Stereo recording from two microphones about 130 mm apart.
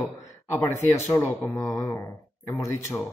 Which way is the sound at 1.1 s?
20° left (ahead or behind).